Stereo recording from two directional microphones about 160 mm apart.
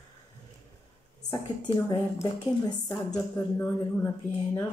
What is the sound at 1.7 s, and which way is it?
Speech, 40° left (ahead or behind).